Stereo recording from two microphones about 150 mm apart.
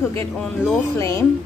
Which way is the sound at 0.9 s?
20° left (ahead or behind).